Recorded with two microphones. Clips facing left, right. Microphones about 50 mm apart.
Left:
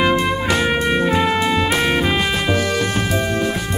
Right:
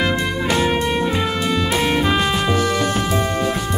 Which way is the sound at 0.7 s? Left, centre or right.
Centre.